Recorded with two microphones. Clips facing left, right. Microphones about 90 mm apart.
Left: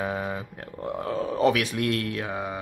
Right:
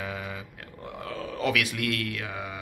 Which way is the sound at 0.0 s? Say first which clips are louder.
Left 6 dB; 35° left (ahead or behind).